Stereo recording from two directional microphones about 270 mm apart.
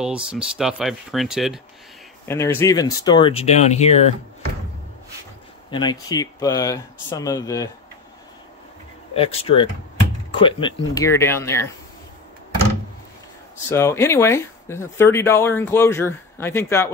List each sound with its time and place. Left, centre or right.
0.0 s speech: centre
2.2 s speech: centre
5.7 s speech: centre
9.1 s speech: left
13.7 s speech: centre